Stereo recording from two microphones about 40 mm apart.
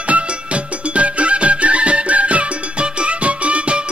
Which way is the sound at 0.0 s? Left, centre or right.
Right.